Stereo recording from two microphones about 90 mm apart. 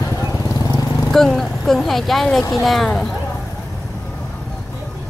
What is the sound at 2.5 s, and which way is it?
Speech, centre (ahead or behind).